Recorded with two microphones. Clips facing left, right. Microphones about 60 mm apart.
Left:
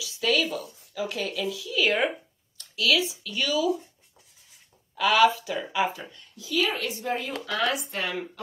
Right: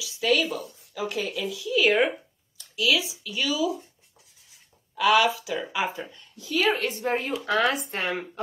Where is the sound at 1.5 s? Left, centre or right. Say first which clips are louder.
Right 5 dB; centre.